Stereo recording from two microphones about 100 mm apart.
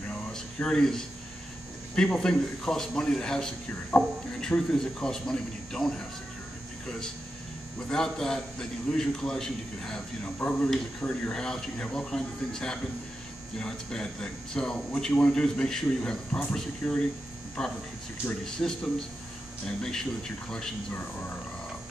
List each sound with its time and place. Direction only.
0.1 s a sound: 10° left (ahead or behind)
2.0 s a man's voice: 5° left (ahead or behind)
7.9 s a man's voice: 5° left (ahead or behind)